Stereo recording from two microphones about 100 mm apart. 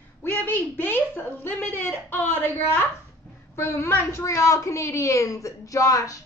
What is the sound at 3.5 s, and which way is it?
A woman's voice, 25° left (ahead or behind).